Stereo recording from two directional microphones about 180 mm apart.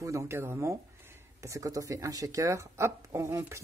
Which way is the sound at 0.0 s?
15° right (ahead or behind).